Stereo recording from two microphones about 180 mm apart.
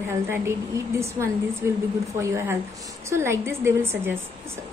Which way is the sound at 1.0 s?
15° right (ahead or behind).